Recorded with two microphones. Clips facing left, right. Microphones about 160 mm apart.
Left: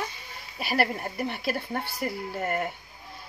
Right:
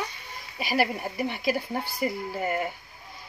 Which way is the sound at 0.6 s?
Centre (ahead or behind).